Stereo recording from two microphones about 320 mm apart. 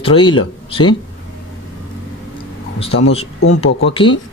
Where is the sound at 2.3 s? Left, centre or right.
Centre.